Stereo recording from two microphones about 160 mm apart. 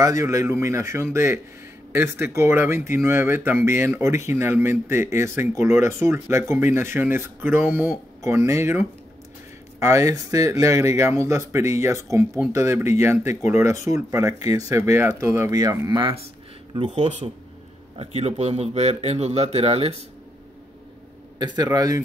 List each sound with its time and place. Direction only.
0.0 s speech: 20° right (ahead or behind)
16.9 s speech: 45° right (ahead or behind)
21.6 s speech: 20° right (ahead or behind)